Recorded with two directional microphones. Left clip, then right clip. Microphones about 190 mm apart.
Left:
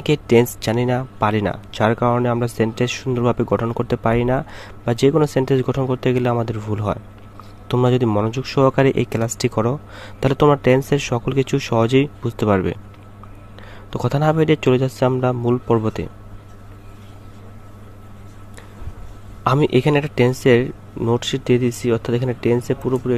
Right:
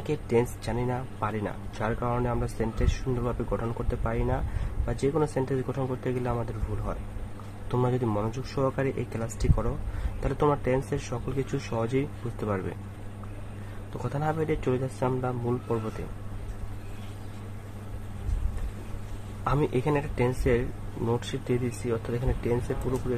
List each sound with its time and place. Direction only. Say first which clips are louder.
0.0 s speech: left 11 dB; 50° left (ahead or behind)
13.9 s speech: left 12 dB; 50° left (ahead or behind)
19.4 s speech: left 11 dB; 55° left (ahead or behind)